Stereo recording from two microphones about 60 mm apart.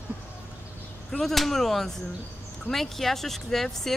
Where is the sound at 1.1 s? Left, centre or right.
Centre.